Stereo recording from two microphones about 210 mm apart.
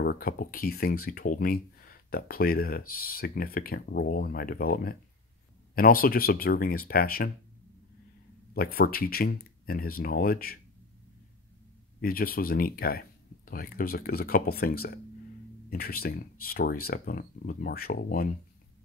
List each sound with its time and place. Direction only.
0.0 s speech: 45° left (ahead or behind)
8.5 s speech: 45° left (ahead or behind)
12.0 s speech: 45° left (ahead or behind)